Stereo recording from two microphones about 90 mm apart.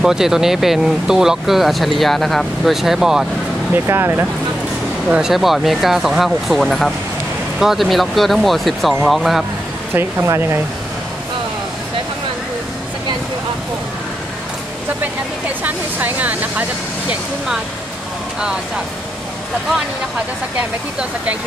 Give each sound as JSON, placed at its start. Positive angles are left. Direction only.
{"t": 0.0, "sound": "speech", "side_deg": -5}
{"t": 3.8, "sound": "speech", "side_deg": -25}
{"t": 5.1, "sound": "speech", "side_deg": -5}
{"t": 9.9, "sound": "speech", "side_deg": -25}
{"t": 15.6, "sound": "speech", "side_deg": -15}